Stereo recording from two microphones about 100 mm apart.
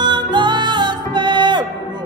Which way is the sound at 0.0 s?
50° right (ahead or behind).